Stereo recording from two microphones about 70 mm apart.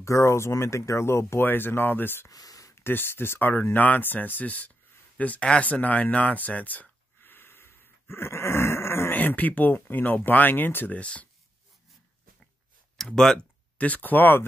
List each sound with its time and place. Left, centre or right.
0.0 s speech: left
2.2 s a sound: left
2.7 s speech: left
9.1 s speech: left
12.9 s speech: centre
13.7 s speech: left